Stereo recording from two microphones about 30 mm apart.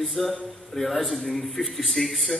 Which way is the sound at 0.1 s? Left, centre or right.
Centre.